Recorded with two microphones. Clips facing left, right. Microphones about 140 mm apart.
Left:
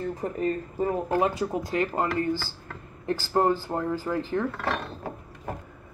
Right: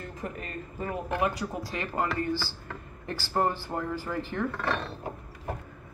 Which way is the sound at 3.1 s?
25° left (ahead or behind).